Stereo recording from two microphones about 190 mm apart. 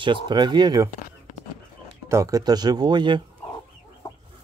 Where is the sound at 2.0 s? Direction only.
15° right (ahead or behind).